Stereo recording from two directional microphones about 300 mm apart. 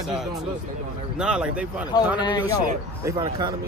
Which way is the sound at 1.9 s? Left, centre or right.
Centre.